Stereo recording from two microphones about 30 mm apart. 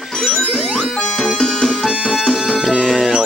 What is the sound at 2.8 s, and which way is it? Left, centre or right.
Music, centre.